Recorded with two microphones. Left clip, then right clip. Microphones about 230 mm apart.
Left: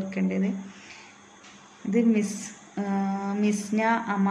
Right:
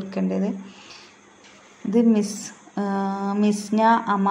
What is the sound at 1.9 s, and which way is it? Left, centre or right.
A woman's voice, centre.